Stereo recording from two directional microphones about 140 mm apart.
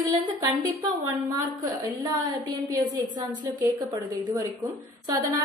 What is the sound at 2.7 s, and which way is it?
Speech, 25° right (ahead or behind).